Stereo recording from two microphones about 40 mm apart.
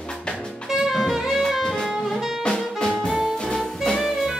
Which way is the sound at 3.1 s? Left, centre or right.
Centre.